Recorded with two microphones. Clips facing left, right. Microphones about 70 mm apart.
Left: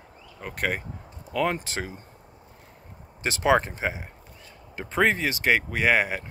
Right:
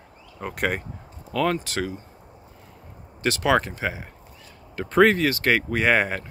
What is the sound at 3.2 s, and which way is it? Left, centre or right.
Speech, left.